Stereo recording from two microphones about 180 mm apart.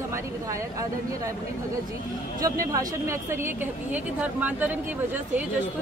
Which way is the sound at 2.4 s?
20° right (ahead or behind).